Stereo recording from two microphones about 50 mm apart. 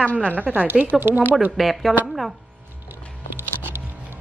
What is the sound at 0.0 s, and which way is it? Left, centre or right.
Speech, left.